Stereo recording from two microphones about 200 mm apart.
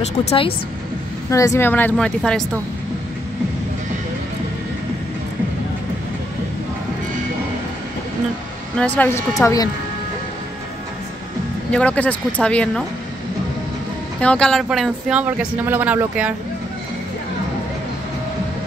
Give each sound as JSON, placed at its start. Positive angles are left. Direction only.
{"t": 0.2, "sound": "speech", "side_deg": 30}
{"t": 1.3, "sound": "speech", "side_deg": 15}
{"t": 8.7, "sound": "speech", "side_deg": 10}
{"t": 11.7, "sound": "speech", "side_deg": 5}
{"t": 14.2, "sound": "speech", "side_deg": 5}